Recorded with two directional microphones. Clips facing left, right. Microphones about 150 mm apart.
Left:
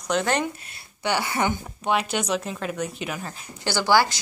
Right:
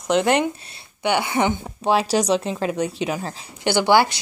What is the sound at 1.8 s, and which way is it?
A woman's voice, 35° right (ahead or behind).